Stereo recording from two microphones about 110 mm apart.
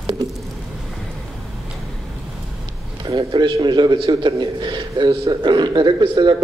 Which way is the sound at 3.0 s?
45° right (ahead or behind).